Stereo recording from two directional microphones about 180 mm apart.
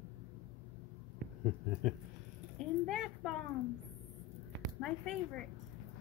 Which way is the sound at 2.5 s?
Centre (ahead or behind).